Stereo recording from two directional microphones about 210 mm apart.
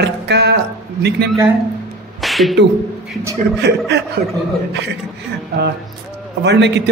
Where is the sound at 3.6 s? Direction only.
50° right (ahead or behind).